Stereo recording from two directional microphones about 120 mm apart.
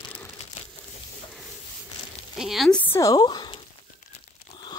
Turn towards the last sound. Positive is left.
turn(degrees=40)  # may be behind; listen again after turning